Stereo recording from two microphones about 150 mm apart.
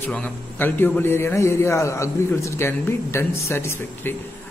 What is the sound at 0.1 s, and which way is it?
A man's voice, 10° left (ahead or behind).